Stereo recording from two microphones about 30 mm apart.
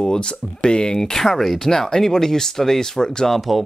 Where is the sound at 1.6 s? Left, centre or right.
Centre.